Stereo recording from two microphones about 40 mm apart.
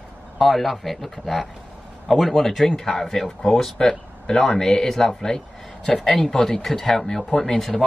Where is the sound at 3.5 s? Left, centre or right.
Left.